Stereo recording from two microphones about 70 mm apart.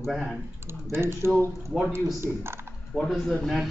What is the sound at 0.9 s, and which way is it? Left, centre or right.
Speech, right.